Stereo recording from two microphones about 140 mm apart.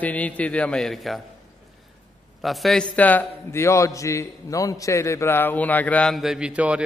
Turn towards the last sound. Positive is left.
turn(degrees=-10)  # may be behind; listen again after turning